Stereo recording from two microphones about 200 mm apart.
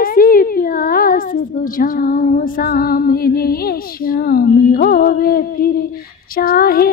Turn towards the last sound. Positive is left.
turn(degrees=50)  # may be behind; listen again after turning